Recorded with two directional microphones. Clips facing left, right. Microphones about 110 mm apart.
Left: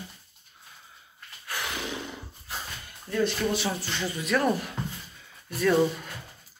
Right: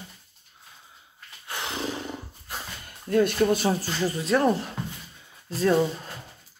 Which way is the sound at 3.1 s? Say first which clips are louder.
Right 5 dB; 50° right (ahead or behind).